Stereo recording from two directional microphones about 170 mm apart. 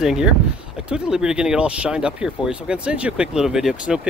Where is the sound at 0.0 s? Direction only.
5° right (ahead or behind).